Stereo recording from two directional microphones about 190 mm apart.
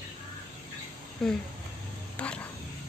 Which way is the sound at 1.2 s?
Centre (ahead or behind).